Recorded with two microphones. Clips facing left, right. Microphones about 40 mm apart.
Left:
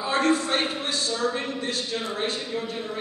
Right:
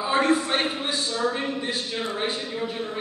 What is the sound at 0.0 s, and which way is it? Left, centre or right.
A man's voice, centre.